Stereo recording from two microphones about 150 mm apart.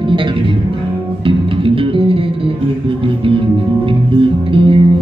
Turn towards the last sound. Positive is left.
turn(degrees=-35)  # may be behind; listen again after turning